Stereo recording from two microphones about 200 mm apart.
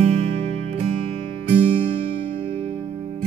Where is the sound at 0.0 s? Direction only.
30° right (ahead or behind).